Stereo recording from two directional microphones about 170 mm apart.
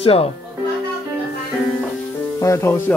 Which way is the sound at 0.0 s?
35° left (ahead or behind).